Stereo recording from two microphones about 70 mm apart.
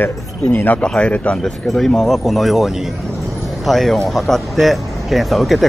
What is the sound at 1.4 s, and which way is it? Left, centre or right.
Speech, centre.